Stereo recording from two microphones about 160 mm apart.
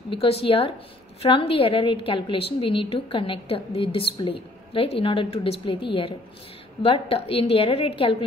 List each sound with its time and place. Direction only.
0.1 s a woman's voice: 35° left (ahead or behind)